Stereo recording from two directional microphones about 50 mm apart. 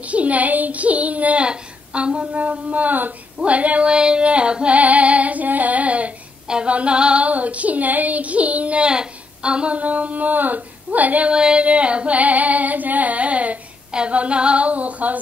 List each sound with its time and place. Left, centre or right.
0.0 s a woman's voice: right
3.3 s female singing: right
11.2 s female singing: centre